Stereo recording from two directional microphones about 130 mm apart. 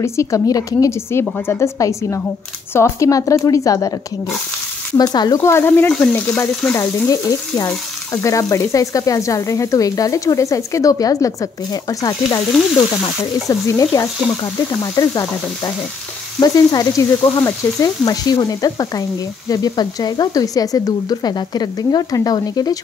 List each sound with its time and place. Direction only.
0.0 s frying: 20° left (ahead or behind)
4.9 s frying: 30° left (ahead or behind)
5.4 s speech: 20° left (ahead or behind)
6.7 s frying: 25° left (ahead or behind)